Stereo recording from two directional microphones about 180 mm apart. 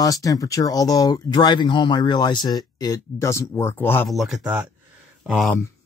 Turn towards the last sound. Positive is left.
turn(degrees=0)  # may be behind; listen again after turning